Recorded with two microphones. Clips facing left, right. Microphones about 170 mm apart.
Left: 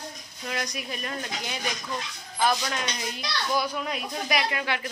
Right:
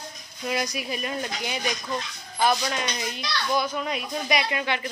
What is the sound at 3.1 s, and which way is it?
Speech, 5° left (ahead or behind).